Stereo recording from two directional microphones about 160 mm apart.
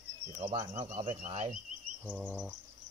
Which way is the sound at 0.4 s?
45° right (ahead or behind).